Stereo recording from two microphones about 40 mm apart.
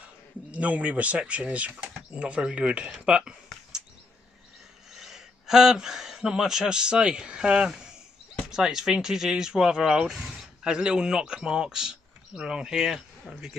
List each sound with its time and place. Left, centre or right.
0.0 s a man's voice: right
4.9 s speech: centre; by 7.6 s right
7.6 s speech: centre